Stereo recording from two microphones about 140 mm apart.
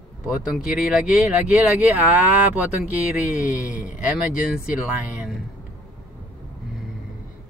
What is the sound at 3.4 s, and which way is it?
Speech, 65° left (ahead or behind).